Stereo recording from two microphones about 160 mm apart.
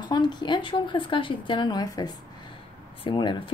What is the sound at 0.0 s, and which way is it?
A woman's voice, 25° left (ahead or behind).